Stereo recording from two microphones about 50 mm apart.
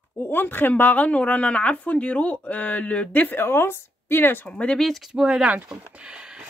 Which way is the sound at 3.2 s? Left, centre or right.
Left.